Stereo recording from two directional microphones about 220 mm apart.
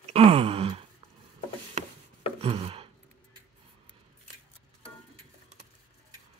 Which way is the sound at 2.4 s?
25° right (ahead or behind).